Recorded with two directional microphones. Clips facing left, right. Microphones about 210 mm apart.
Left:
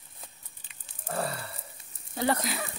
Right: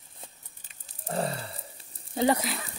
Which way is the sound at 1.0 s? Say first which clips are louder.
Right 2 dB; 25° right (ahead or behind).